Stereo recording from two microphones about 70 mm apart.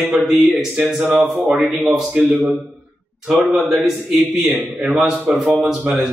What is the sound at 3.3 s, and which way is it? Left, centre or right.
A man's voice, centre.